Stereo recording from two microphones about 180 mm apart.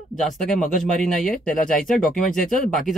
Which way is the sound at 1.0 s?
Centre (ahead or behind).